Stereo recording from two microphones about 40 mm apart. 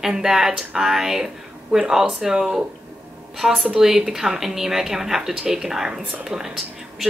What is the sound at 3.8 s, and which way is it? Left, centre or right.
A woman's voice, centre.